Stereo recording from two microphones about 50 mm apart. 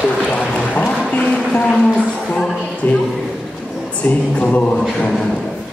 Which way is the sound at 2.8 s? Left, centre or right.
Left.